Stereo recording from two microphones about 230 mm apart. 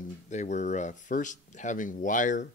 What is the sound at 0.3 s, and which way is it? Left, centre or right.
Speech, left.